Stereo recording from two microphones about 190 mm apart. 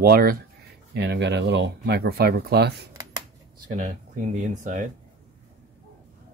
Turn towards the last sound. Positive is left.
turn(degrees=-45)  # may be behind; listen again after turning